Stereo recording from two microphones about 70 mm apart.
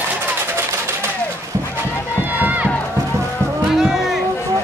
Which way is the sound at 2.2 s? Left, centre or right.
Right.